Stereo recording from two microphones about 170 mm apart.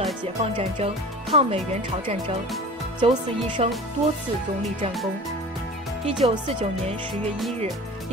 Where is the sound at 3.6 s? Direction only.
35° right (ahead or behind).